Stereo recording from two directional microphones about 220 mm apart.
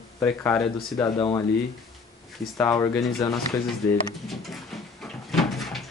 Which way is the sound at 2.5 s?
15° left (ahead or behind).